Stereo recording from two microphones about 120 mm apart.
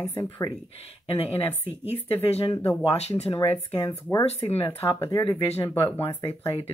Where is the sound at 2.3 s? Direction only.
50° left (ahead or behind).